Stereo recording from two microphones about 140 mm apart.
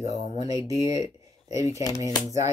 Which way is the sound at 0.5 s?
25° right (ahead or behind).